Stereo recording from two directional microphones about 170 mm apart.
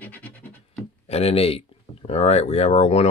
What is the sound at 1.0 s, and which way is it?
Speech, 35° left (ahead or behind).